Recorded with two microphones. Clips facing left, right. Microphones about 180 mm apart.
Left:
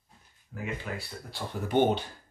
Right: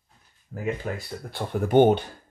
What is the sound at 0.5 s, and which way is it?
Speech, 45° right (ahead or behind).